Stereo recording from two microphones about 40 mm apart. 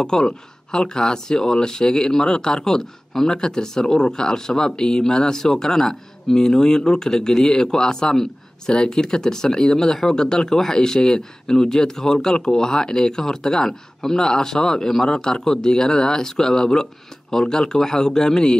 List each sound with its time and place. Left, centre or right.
0.0 s speech: centre